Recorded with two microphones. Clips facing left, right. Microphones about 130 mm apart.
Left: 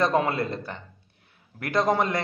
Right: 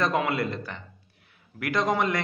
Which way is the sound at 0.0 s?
30° left (ahead or behind).